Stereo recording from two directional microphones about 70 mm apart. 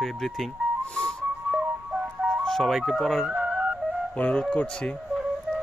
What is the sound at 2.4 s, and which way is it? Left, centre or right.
Speech, centre.